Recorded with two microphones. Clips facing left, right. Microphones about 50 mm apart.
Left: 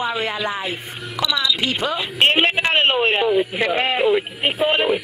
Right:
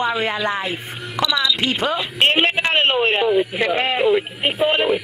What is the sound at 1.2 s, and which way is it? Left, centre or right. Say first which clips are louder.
A man's voice: right 1 dB; centre.